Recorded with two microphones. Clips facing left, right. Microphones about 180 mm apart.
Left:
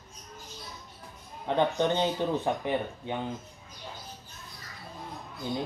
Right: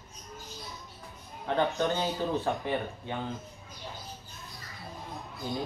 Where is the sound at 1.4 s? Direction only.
20° left (ahead or behind).